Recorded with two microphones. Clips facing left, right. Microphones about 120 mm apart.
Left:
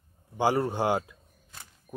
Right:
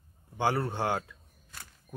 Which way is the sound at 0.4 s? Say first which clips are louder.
Left 4 dB; 15° left (ahead or behind).